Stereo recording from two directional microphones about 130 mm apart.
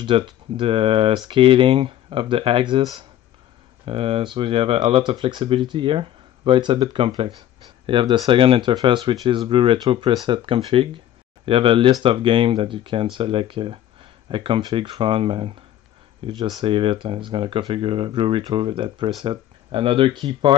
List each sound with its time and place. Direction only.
0.0 s speech: 40° right (ahead or behind)
3.8 s speech: 45° right (ahead or behind)
16.3 s speech: 30° right (ahead or behind)